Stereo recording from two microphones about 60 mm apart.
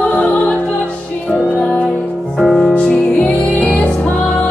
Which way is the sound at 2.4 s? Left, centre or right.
Centre.